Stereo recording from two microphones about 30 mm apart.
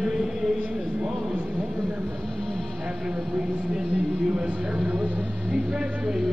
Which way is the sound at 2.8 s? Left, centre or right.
Centre.